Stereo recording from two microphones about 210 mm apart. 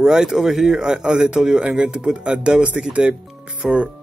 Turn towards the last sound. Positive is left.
turn(degrees=0)  # may be behind; listen again after turning